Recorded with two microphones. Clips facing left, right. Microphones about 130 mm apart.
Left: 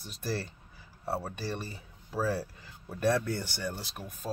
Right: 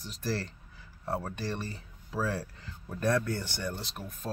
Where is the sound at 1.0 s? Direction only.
5° left (ahead or behind).